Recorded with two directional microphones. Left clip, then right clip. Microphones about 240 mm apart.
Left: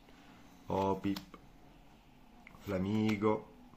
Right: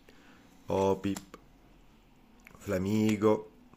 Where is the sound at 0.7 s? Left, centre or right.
Right.